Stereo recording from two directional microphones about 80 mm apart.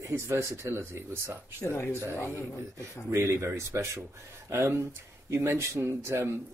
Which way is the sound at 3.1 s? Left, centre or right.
Right.